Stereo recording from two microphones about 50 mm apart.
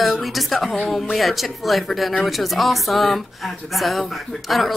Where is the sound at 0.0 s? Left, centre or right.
Centre.